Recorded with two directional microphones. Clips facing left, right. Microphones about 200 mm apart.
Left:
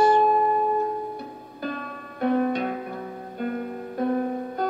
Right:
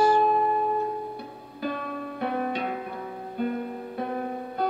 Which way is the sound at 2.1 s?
45° left (ahead or behind).